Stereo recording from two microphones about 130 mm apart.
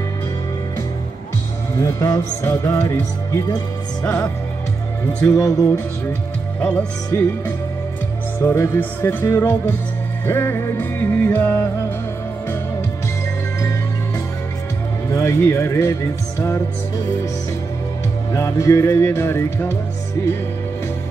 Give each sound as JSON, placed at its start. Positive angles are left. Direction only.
{"t": 1.8, "sound": "music", "side_deg": 20}
{"t": 5.2, "sound": "music", "side_deg": 25}
{"t": 6.6, "sound": "music", "side_deg": 10}
{"t": 13.6, "sound": "music", "side_deg": 25}
{"t": 18.3, "sound": "music", "side_deg": 25}